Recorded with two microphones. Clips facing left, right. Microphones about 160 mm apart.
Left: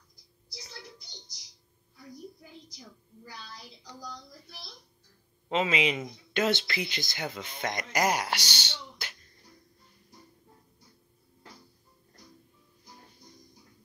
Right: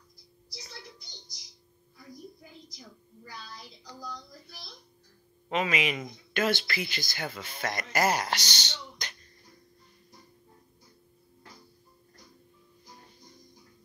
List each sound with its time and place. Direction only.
5.5 s speech: 20° left (ahead or behind)